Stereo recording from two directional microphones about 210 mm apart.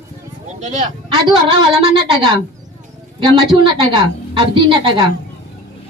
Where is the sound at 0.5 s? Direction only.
35° right (ahead or behind).